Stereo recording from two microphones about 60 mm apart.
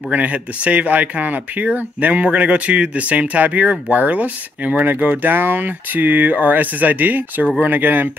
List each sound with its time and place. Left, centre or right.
0.1 s speech: right